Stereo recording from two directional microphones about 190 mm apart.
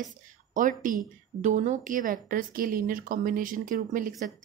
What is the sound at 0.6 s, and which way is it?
A woman's voice, 45° right (ahead or behind).